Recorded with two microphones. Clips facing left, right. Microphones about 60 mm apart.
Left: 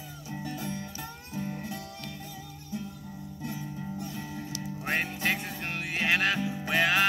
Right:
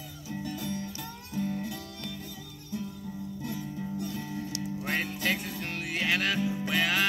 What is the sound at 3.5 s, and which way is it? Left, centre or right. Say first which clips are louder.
Music: even; left.